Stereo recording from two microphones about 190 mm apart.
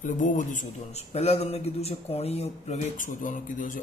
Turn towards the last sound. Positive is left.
turn(degrees=45)  # may be behind; listen again after turning